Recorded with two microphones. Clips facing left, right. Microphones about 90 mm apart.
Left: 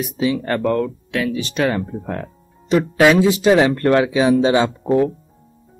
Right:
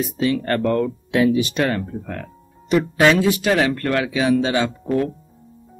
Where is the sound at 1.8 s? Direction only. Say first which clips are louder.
Left 3 dB; 25° left (ahead or behind).